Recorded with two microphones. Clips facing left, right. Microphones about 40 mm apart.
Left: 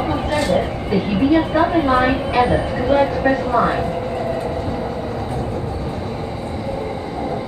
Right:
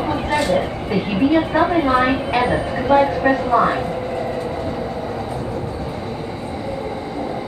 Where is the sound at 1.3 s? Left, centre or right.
Centre.